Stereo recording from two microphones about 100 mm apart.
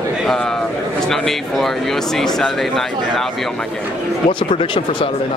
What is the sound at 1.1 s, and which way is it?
Speech, 5° left (ahead or behind).